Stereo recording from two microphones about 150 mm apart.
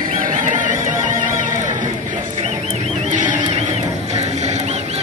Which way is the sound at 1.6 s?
55° right (ahead or behind).